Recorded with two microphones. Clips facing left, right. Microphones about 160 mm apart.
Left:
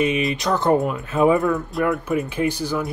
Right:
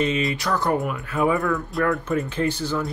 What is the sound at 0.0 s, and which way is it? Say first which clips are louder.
Speech: left 2 dB; 20° left (ahead or behind).